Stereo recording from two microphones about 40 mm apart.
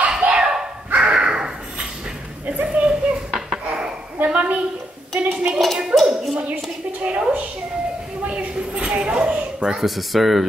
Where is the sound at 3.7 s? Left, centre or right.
Right.